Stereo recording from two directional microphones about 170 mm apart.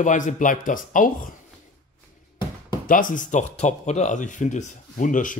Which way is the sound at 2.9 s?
50° left (ahead or behind).